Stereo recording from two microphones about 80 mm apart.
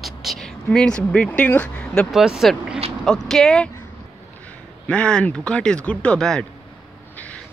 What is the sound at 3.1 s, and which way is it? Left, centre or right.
Speech, centre.